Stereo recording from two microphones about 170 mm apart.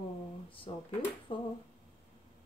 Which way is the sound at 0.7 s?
30° left (ahead or behind).